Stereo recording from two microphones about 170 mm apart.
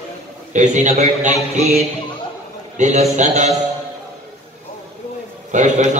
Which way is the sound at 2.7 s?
45° right (ahead or behind).